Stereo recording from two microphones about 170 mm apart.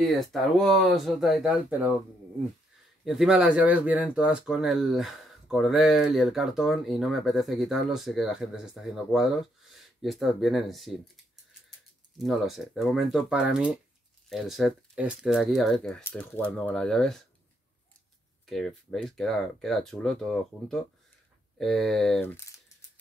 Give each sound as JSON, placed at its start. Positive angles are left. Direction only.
{"t": 0.0, "sound": "speech", "side_deg": 0}
{"t": 3.1, "sound": "speech", "side_deg": -5}
{"t": 12.2, "sound": "speech", "side_deg": 0}
{"t": 16.0, "sound": "speech", "side_deg": 10}
{"t": 18.5, "sound": "speech", "side_deg": 0}